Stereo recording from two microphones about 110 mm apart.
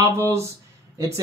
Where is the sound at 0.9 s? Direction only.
30° right (ahead or behind).